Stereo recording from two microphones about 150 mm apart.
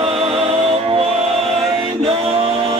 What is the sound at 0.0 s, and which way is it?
Music, 40° right (ahead or behind).